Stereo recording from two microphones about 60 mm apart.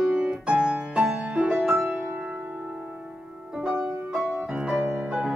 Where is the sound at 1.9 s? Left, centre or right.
Right.